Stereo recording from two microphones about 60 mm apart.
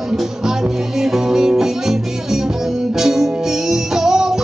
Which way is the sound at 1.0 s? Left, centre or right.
Centre.